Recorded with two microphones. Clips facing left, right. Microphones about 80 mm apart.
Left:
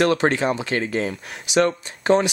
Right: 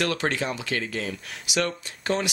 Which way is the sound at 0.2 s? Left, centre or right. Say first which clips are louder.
Left 7 dB; left.